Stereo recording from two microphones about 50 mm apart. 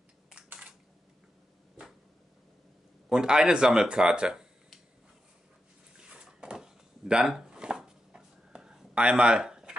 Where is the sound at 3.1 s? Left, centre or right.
Centre.